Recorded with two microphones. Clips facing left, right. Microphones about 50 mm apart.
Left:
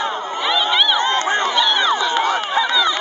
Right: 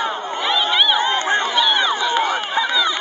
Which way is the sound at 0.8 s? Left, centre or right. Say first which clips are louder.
Even; centre.